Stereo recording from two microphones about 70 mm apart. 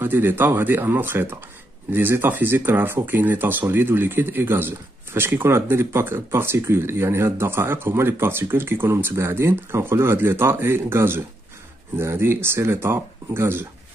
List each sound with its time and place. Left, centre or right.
0.0 s speech: right